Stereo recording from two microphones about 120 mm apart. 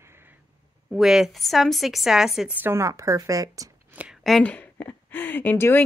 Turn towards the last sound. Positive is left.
turn(degrees=15)  # may be behind; listen again after turning